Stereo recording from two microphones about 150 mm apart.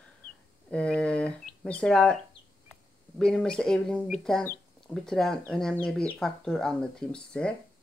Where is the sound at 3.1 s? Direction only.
5° left (ahead or behind).